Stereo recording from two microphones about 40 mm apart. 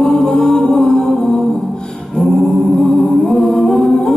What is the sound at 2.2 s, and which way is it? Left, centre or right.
Singing, centre.